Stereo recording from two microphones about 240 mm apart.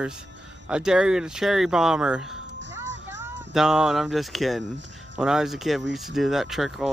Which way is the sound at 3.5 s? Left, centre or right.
Centre.